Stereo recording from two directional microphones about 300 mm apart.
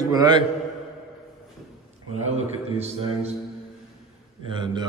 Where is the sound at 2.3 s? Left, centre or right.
Right.